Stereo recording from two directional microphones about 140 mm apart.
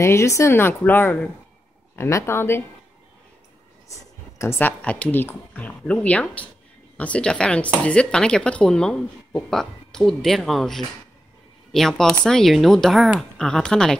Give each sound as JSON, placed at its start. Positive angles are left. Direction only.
{"t": 0.0, "sound": "speech", "side_deg": 20}
{"t": 3.9, "sound": "speech", "side_deg": 20}